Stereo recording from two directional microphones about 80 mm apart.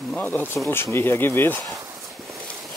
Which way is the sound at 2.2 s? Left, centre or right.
Right.